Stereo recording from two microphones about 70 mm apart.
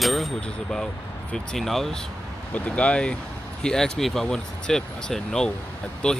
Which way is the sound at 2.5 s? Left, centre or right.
Centre.